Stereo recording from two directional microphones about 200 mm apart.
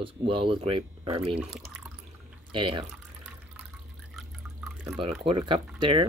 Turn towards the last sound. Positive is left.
turn(degrees=-25)  # may be behind; listen again after turning